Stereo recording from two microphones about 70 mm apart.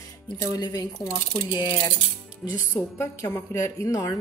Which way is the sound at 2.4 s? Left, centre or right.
Centre.